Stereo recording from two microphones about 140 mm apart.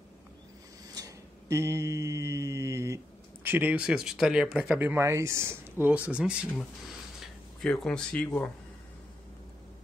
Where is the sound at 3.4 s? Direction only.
15° right (ahead or behind).